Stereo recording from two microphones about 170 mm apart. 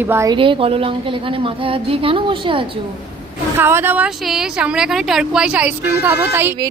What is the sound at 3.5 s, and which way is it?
A woman's voice, 15° right (ahead or behind).